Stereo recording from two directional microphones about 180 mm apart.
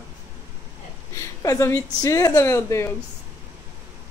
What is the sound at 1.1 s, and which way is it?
Speech, 15° left (ahead or behind).